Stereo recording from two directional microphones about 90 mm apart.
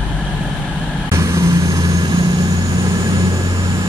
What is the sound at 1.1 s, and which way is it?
Vehicle, 35° right (ahead or behind).